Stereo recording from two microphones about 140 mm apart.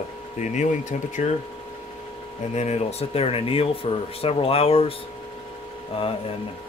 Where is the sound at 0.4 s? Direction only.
60° left (ahead or behind).